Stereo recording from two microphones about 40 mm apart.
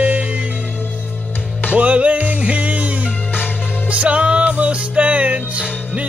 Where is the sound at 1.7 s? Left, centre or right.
Right.